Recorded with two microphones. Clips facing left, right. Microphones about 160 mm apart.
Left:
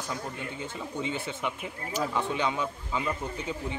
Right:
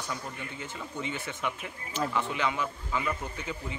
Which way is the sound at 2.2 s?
25° left (ahead or behind).